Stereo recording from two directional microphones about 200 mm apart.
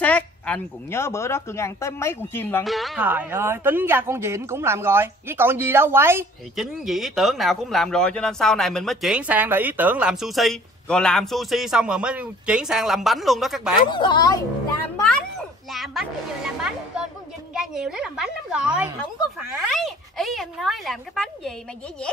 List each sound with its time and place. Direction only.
0.0 s speech: 5° left (ahead or behind)
2.6 s speech: centre (ahead or behind)
6.5 s speech: centre (ahead or behind)
13.8 s a woman's voice: 20° left (ahead or behind)
15.0 s speech: centre (ahead or behind)